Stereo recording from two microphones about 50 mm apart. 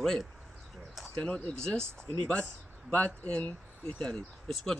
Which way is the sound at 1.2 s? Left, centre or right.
Left.